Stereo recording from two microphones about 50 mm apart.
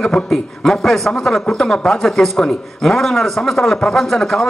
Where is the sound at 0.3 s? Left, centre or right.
Centre.